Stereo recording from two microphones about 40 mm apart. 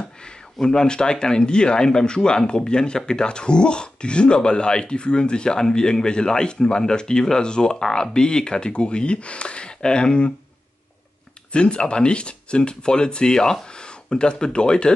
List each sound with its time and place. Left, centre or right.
0.6 s speech: centre
11.5 s speech: left